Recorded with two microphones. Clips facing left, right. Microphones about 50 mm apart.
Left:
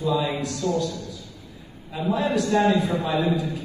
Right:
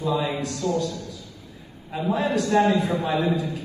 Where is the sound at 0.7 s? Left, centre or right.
Right.